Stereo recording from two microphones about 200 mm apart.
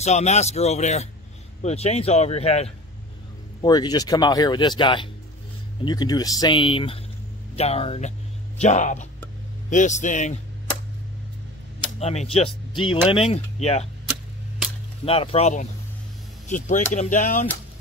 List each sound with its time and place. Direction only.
0.0 s speech: 35° left (ahead or behind)
3.6 s speech: 20° left (ahead or behind); by 10.3 s 35° left (ahead or behind)
12.0 s speech: 35° left (ahead or behind)
15.0 s speech: 30° left (ahead or behind)